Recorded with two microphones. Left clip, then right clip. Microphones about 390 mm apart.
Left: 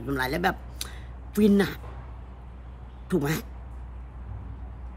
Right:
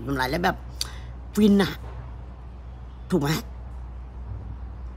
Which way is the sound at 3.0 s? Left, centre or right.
Centre.